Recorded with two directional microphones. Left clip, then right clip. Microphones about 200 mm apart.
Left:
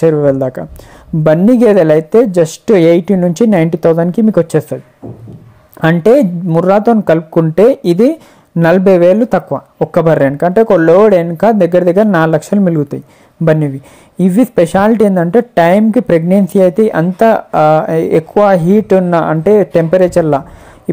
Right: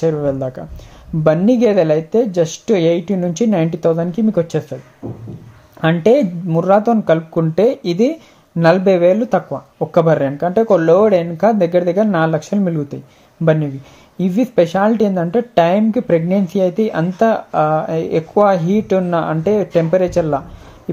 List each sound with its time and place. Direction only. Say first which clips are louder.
0.0 s speech: left 8 dB; 40° left (ahead or behind)
5.8 s speech: left 5 dB; 35° left (ahead or behind)
14.1 s speech: left 4 dB; 35° left (ahead or behind)